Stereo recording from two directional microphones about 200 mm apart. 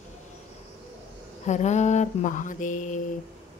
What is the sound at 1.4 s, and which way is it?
Speech, 35° left (ahead or behind).